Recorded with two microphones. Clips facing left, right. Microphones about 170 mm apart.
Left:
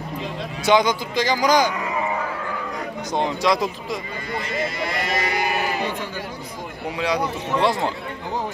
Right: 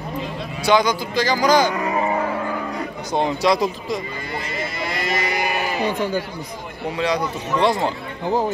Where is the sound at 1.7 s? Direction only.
40° right (ahead or behind).